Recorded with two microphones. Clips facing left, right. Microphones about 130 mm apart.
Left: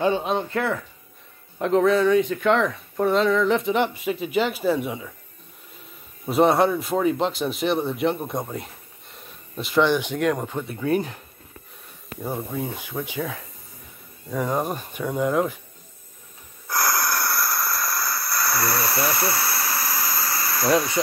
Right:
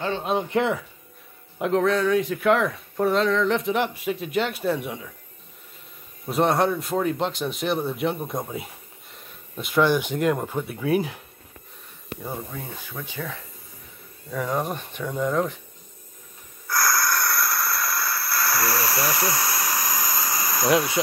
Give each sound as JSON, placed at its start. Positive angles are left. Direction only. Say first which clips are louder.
{"t": 0.4, "sound": "speech", "louder": "right 2 dB", "side_deg": -15}
{"t": 1.6, "sound": "speech", "louder": "left 3 dB", "side_deg": 0}
{"t": 6.2, "sound": "speech", "louder": "left 3 dB", "side_deg": 0}
{"t": 12.2, "sound": "speech", "louder": "left 6 dB", "side_deg": 10}
{"t": 14.3, "sound": "speech", "louder": "left 2 dB", "side_deg": 0}
{"t": 16.6, "sound": "a sound", "louder": "even", "side_deg": 20}
{"t": 20.7, "sound": "speech", "louder": "even", "side_deg": -10}